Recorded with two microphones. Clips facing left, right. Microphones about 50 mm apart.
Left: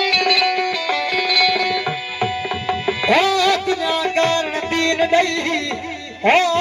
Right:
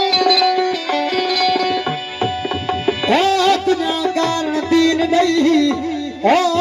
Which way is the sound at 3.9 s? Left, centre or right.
Left.